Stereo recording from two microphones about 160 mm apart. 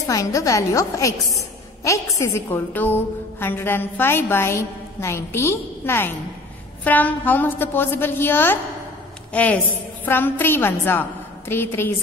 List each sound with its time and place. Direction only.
0.0 s a woman's voice: 20° left (ahead or behind)